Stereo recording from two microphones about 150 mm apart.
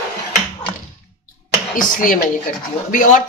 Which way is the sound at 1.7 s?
60° left (ahead or behind).